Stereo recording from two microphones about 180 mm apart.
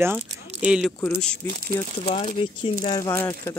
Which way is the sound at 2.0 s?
35° left (ahead or behind).